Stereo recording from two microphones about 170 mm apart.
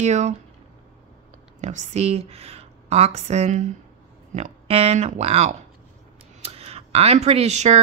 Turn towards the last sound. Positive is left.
turn(degrees=-40)  # may be behind; listen again after turning